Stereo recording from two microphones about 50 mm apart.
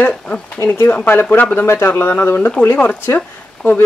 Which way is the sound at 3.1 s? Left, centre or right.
Left.